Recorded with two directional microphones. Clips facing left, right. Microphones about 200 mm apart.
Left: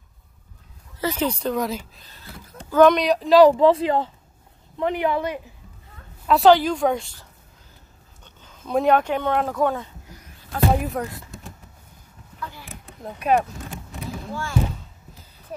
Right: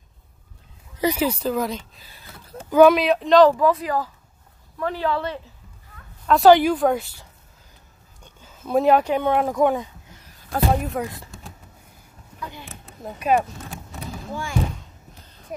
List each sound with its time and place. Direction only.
0.9 s speech: 10° right (ahead or behind)
3.5 s speech: 25° left (ahead or behind)
6.2 s speech: centre (ahead or behind); by 10.1 s 15° right (ahead or behind)
10.7 s speech: centre (ahead or behind)
12.4 s a sound: 20° right (ahead or behind)
13.0 s speech: centre (ahead or behind)
14.3 s speech: 15° right (ahead or behind)